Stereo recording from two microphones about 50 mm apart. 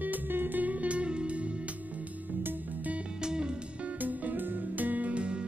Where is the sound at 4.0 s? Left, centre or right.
Right.